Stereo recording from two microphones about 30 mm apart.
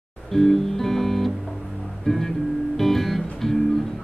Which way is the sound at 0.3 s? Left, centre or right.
Centre.